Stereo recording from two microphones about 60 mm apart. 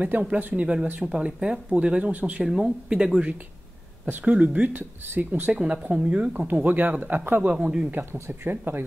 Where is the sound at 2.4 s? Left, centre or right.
Centre; by 5.5 s right.